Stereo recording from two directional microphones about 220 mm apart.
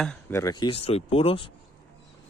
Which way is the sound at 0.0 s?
10° left (ahead or behind).